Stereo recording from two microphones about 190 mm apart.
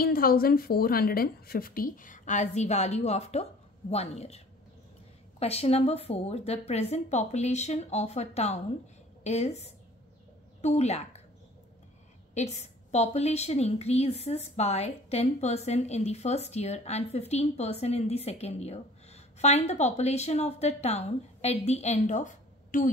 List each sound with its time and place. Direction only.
0.0 s a woman's voice: 50° left (ahead or behind); by 4.4 s 35° left (ahead or behind)
5.4 s a woman's voice: 30° left (ahead or behind)
12.9 s a woman's voice: 35° left (ahead or behind)